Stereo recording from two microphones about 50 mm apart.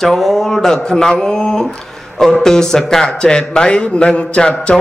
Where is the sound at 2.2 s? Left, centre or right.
Centre.